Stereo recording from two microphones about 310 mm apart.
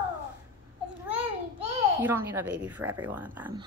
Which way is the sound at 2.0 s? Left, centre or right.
Centre.